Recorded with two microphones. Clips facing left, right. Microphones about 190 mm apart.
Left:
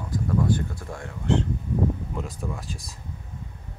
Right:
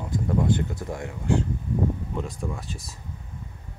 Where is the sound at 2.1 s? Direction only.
Centre (ahead or behind).